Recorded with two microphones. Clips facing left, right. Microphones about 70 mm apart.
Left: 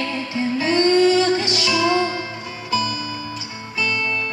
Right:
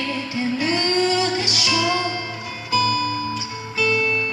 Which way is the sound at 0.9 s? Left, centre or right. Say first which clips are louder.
Left 5 dB; centre.